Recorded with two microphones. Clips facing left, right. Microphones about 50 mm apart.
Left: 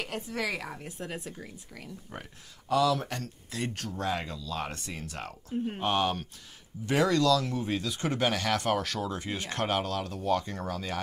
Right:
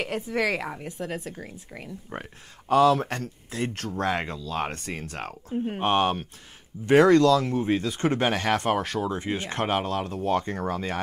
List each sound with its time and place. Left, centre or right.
0.0 s speech: right